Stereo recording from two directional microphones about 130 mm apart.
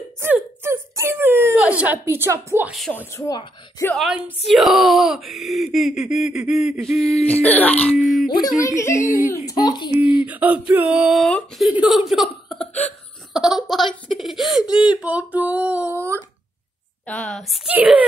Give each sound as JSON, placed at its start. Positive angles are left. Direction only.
{"t": 0.2, "sound": "whimper", "side_deg": -20}
{"t": 3.2, "sound": "speech", "side_deg": 30}
{"t": 3.9, "sound": "speech", "side_deg": 0}
{"t": 7.4, "sound": "speech", "side_deg": 10}
{"t": 7.9, "sound": "speech", "side_deg": -5}
{"t": 8.5, "sound": "a woman's voice", "side_deg": 25}
{"t": 9.9, "sound": "a sound", "side_deg": -10}
{"t": 11.2, "sound": "speech", "side_deg": 5}
{"t": 17.0, "sound": "speech", "side_deg": 5}
{"t": 17.6, "sound": "a sound", "side_deg": -10}